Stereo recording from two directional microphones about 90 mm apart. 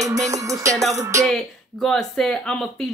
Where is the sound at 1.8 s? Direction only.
5° left (ahead or behind).